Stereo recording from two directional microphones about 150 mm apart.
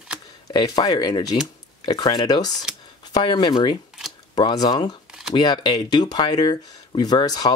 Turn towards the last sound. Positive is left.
turn(degrees=25)  # may be behind; listen again after turning